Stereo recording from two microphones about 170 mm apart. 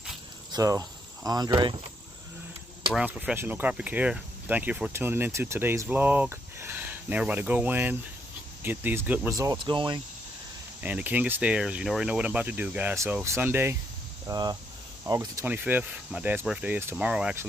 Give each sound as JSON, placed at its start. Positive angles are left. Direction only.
{"t": 0.5, "sound": "speech", "side_deg": -20}
{"t": 2.9, "sound": "speech", "side_deg": -5}
{"t": 10.8, "sound": "speech", "side_deg": -10}